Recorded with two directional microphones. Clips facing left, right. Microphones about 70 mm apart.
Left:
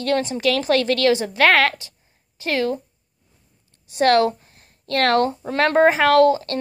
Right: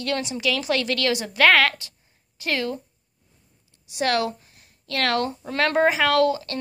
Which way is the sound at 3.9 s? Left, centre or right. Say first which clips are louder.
Left 7 dB; left.